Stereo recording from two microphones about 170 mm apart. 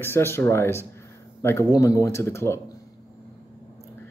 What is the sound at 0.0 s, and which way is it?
A man's voice, 15° left (ahead or behind).